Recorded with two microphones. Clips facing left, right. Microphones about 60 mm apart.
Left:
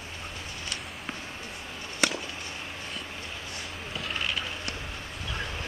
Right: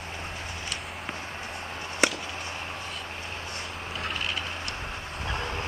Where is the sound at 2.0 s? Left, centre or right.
Centre.